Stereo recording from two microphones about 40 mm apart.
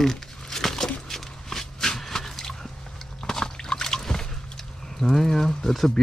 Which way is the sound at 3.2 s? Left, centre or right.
Centre.